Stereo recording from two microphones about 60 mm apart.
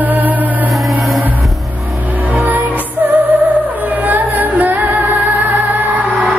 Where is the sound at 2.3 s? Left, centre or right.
Right.